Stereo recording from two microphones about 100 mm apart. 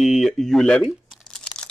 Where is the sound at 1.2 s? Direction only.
10° left (ahead or behind).